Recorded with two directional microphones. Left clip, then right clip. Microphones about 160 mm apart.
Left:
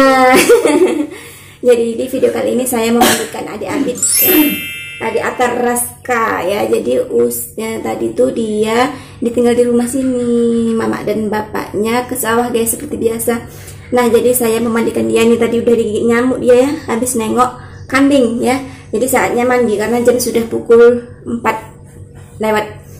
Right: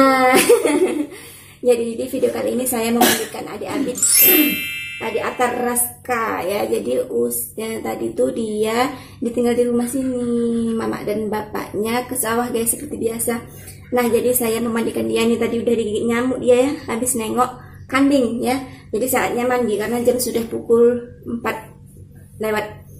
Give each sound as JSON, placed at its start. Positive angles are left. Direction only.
{"t": 0.0, "sound": "a sound", "side_deg": 10}
{"t": 1.7, "sound": "a woman's voice", "side_deg": 5}
{"t": 22.4, "sound": "a woman's voice", "side_deg": 5}